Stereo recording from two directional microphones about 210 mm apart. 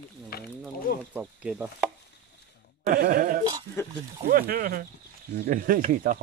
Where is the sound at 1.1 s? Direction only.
5° right (ahead or behind).